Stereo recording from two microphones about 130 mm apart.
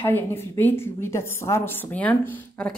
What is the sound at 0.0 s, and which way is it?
A woman's voice, 15° left (ahead or behind).